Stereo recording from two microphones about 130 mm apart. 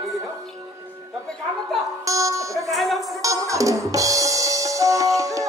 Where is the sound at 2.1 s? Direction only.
25° right (ahead or behind).